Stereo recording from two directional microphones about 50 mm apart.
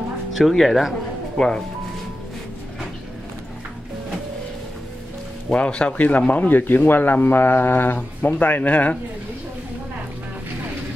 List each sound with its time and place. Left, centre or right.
0.4 s speech: centre
5.5 s speech: left